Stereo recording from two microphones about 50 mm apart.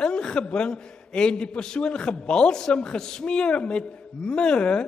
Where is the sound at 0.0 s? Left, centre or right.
Centre.